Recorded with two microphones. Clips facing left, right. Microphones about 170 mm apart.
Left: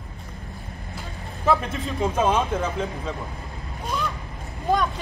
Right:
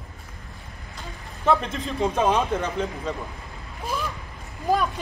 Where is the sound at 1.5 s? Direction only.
5° left (ahead or behind).